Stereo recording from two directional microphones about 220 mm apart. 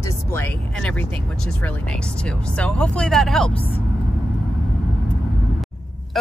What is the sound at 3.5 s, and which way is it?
Speech, 25° left (ahead or behind).